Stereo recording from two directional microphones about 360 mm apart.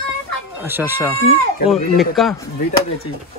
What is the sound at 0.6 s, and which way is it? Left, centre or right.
Speech, centre.